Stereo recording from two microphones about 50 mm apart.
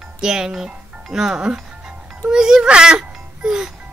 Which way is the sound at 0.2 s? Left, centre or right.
Centre.